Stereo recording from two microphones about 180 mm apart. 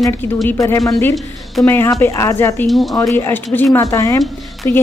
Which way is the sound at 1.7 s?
15° left (ahead or behind).